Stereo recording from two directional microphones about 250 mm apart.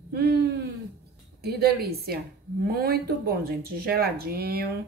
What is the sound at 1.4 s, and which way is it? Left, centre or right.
Speech, right.